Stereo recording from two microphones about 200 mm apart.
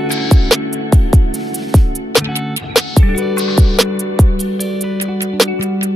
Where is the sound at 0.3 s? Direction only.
Centre (ahead or behind).